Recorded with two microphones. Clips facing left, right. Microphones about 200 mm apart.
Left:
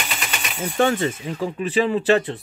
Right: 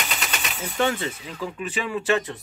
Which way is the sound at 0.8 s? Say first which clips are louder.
Left 5 dB; 40° left (ahead or behind).